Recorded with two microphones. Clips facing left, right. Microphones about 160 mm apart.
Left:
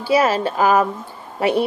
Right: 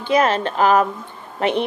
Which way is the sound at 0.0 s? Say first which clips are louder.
Left 1 dB; 10° left (ahead or behind).